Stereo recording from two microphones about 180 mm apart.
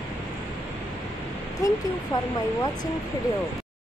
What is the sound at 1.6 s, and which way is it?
Speech, 15° left (ahead or behind).